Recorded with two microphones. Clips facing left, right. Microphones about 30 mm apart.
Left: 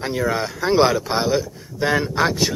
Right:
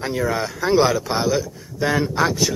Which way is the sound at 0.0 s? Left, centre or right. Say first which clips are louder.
Even; centre.